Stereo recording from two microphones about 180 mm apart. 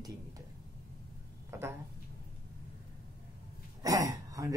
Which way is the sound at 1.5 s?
15° right (ahead or behind).